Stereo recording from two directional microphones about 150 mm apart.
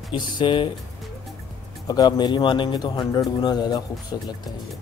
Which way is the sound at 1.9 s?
30° left (ahead or behind).